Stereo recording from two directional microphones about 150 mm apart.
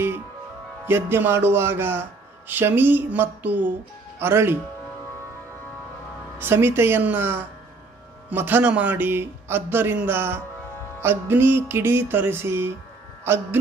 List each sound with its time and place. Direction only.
0.8 s a man's voice: 15° right (ahead or behind)
6.3 s a man's voice: 15° right (ahead or behind)